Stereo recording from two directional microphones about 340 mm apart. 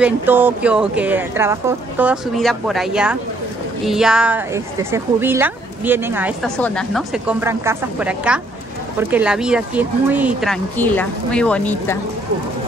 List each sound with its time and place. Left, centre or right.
0.0 s a woman's voice: centre